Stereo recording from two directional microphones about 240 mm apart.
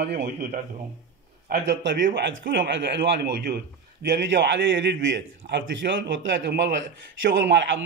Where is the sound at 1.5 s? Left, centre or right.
Right.